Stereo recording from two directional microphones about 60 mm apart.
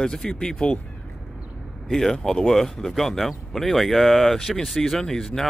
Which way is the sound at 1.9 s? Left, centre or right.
Centre.